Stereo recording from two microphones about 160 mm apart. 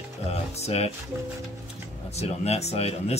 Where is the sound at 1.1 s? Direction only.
15° right (ahead or behind).